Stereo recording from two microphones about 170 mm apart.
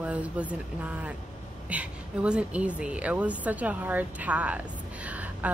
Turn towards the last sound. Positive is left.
turn(degrees=-10)  # may be behind; listen again after turning